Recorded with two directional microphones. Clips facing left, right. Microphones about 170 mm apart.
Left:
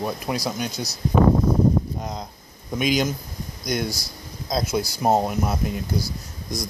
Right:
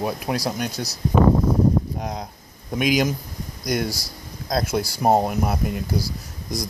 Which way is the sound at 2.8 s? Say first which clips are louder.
Right 2 dB; 5° right (ahead or behind).